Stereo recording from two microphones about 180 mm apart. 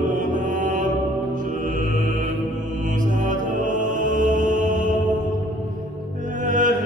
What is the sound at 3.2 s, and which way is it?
Mantra, 45° right (ahead or behind).